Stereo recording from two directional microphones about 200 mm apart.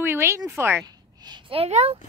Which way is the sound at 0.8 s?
20° right (ahead or behind).